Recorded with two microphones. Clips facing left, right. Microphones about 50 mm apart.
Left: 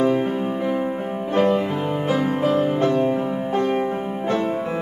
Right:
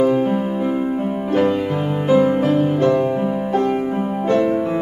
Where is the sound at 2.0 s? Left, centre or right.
Right.